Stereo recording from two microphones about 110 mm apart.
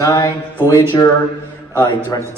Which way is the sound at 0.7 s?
25° left (ahead or behind).